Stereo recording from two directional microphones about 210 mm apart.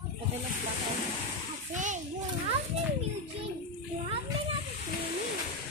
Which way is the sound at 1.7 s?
35° right (ahead or behind).